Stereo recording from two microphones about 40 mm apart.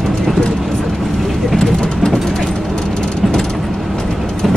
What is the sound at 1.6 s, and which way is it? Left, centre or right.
Vehicle, centre.